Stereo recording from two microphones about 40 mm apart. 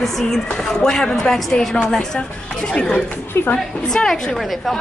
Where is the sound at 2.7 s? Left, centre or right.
Left.